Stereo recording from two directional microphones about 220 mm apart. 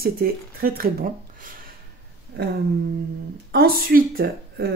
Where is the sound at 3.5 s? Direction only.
45° right (ahead or behind).